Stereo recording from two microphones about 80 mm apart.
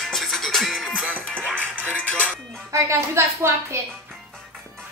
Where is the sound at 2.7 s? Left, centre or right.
Right.